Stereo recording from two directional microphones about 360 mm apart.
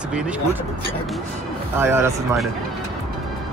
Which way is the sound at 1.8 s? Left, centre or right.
Centre.